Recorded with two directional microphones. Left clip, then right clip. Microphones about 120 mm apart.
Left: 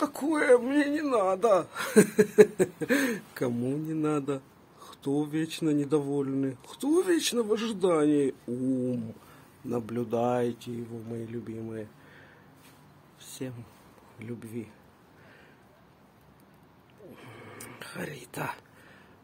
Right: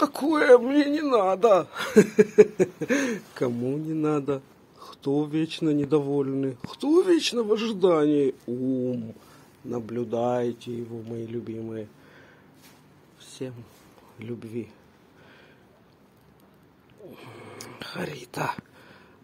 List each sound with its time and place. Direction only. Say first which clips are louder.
0.0 s speech: right 5 dB; 15° right (ahead or behind); by 3.5 s centre (ahead or behind)
3.6 s speech: right 3 dB; 15° left (ahead or behind)
8.8 s speech: right 3 dB; 25° left (ahead or behind); by 12.3 s 5° left (ahead or behind)
13.2 s a sound: right 3 dB; 15° left (ahead or behind)
14.1 s speech: right 5 dB; centre (ahead or behind)
17.1 s whispering: right 3 dB; centre (ahead or behind)